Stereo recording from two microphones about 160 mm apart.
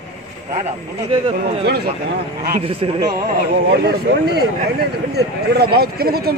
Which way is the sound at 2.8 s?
35° right (ahead or behind).